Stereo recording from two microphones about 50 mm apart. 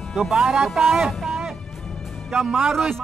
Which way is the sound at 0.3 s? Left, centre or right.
Centre.